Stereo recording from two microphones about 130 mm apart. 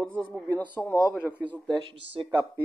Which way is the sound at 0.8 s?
25° left (ahead or behind).